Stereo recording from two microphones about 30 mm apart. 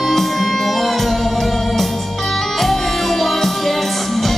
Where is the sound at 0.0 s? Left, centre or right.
Centre.